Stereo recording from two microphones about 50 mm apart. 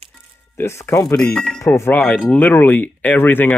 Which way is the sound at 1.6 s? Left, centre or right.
Left.